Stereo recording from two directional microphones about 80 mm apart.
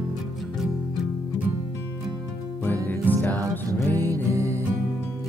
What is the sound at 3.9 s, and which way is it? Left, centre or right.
Music, right.